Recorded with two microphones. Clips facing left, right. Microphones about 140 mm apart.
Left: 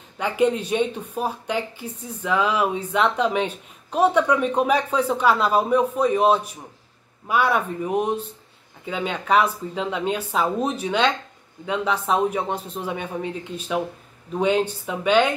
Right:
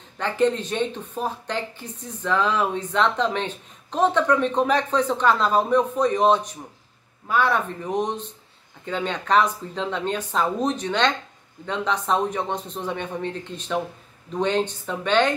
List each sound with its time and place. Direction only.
0.2 s speech: 10° left (ahead or behind)